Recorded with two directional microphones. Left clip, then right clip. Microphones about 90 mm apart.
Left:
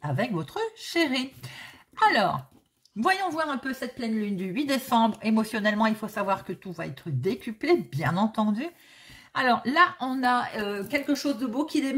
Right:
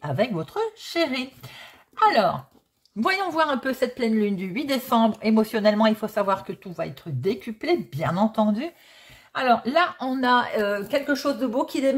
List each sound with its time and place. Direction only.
0.0 s speech: 15° right (ahead or behind)
0.3 s speech: 5° right (ahead or behind)
1.6 s a sound: 5° right (ahead or behind)
3.0 s speech: 35° right (ahead or behind)
3.3 s a woman's voice: 85° right
4.4 s speech: 35° right (ahead or behind); by 8.7 s 20° right (ahead or behind)
9.3 s a woman's voice: 5° right (ahead or behind)
9.7 s speech: 15° right (ahead or behind)
10.2 s speech: 45° right (ahead or behind)